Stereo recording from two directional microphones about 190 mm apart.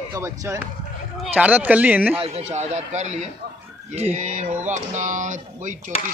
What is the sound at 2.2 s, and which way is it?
Speech, 35° right (ahead or behind).